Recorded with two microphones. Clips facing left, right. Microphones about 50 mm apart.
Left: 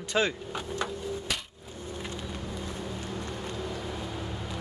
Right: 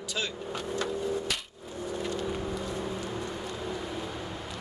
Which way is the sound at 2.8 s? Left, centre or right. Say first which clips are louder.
Right 2 dB; centre.